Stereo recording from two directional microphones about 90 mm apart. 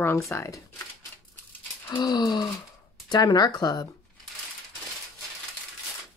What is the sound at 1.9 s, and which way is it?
Speech, 50° left (ahead or behind).